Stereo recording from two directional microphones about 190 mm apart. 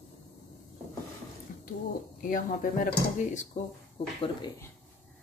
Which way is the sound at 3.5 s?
35° left (ahead or behind).